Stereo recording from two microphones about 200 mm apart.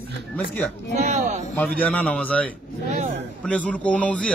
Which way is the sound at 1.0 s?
35° right (ahead or behind).